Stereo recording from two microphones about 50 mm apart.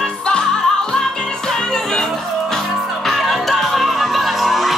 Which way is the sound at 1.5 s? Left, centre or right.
Centre.